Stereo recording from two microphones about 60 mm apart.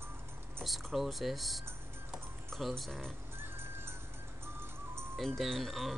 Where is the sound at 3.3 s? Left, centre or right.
Right.